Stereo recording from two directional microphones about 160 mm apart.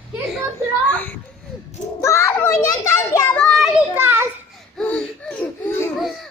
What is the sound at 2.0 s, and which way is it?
Children playing, 20° left (ahead or behind).